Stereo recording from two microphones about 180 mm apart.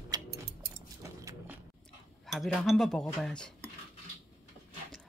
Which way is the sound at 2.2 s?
Centre (ahead or behind).